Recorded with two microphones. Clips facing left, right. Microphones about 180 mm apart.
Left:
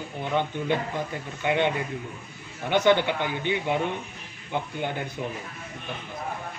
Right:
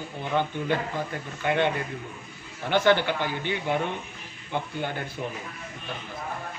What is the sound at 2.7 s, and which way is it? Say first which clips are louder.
A man's voice: left 1 dB; 20° left (ahead or behind).